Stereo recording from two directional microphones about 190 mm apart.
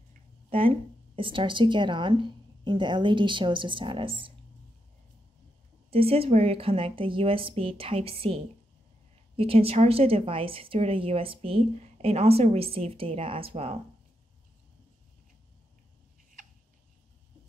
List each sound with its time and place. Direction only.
0.5 s speech: 30° right (ahead or behind)
5.9 s speech: 30° right (ahead or behind)
9.4 s a woman's voice: 30° right (ahead or behind)